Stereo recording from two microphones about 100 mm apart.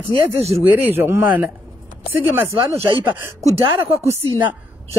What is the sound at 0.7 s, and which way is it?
Speech, 20° right (ahead or behind).